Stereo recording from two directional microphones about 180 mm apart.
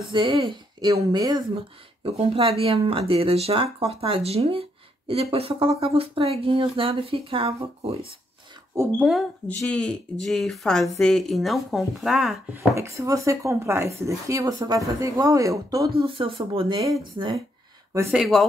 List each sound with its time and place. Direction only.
0.1 s speech: 25° right (ahead or behind)
2.0 s speech: 35° right (ahead or behind)
8.7 s speech: 5° right (ahead or behind)
9.5 s speech: 5° left (ahead or behind)
12.5 s speech: 15° right (ahead or behind)
16.1 s speech: 30° right (ahead or behind)
18.1 s speech: centre (ahead or behind)